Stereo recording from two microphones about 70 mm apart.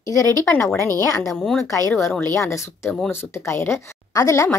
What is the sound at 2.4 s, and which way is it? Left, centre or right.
Speech, left.